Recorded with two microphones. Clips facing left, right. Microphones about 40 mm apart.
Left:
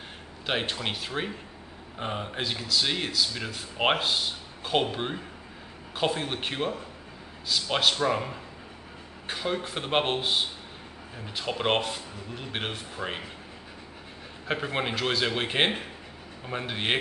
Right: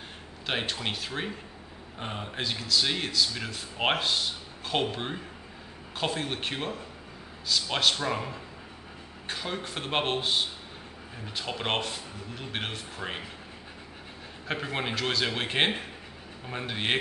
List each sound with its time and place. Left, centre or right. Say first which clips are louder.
0.5 s speech: left 2 dB; centre
14.5 s speech: left 2 dB; centre